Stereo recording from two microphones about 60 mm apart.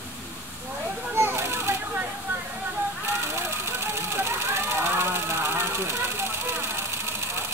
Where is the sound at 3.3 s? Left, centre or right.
Right.